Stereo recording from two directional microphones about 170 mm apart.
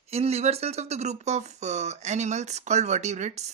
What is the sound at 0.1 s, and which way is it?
Speech, 40° right (ahead or behind).